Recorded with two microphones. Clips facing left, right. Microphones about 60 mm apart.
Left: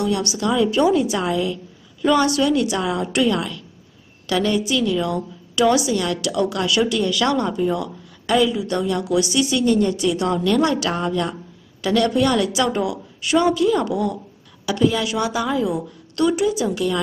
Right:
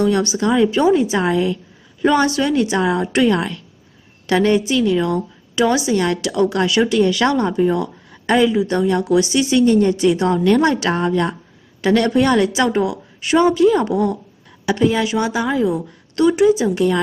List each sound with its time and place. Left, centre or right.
0.0 s a woman's voice: right